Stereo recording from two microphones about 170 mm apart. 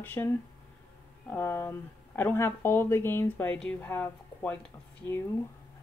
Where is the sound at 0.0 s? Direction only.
10° left (ahead or behind).